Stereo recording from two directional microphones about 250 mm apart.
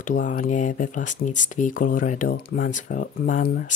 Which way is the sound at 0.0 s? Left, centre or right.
Left.